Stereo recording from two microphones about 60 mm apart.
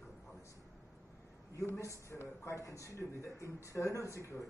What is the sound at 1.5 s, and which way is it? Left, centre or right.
Speech, left.